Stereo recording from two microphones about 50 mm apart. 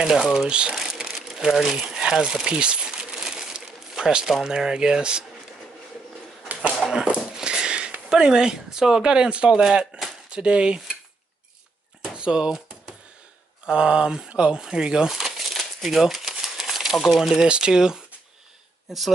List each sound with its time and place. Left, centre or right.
0.2 s speech: centre
0.5 s cutlery: centre
0.7 s crumpling: centre
4.5 s speech: centre
6.8 s a sound: centre
8.1 s speech: centre
10.3 s cutlery: right
12.1 s a sound: centre
13.7 s speech: centre
15.1 s a sound: centre
16.9 s speech: centre
17.2 s speech: centre